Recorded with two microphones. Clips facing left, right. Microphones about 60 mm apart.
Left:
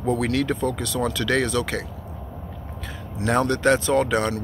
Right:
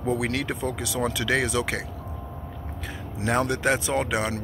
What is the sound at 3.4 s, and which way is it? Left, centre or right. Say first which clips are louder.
Speech: left 6 dB; centre.